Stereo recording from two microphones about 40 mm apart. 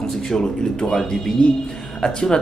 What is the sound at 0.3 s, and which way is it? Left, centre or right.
Speech, centre.